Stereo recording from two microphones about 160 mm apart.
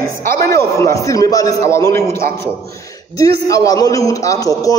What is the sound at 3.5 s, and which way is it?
A man's voice, 20° left (ahead or behind).